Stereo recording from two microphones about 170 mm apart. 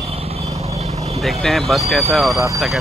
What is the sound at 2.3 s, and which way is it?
Speech, 15° right (ahead or behind).